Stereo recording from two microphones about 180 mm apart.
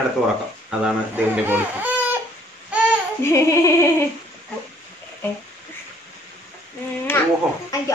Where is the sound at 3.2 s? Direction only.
15° left (ahead or behind).